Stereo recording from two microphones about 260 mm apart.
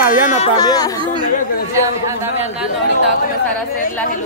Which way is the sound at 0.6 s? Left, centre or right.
Centre.